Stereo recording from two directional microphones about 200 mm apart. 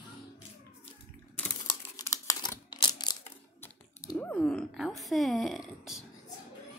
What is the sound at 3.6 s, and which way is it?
Typing, 10° left (ahead or behind).